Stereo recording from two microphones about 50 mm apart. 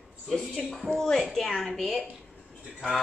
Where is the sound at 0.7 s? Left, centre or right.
Centre.